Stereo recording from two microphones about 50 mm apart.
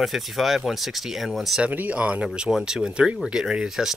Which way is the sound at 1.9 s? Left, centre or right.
Right.